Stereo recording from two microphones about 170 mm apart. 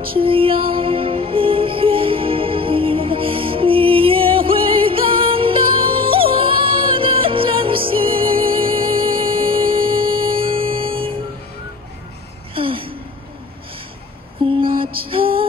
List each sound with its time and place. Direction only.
0.2 s music: 30° right (ahead or behind)
12.5 s gasp: 30° right (ahead or behind)
14.7 s music: 60° right (ahead or behind)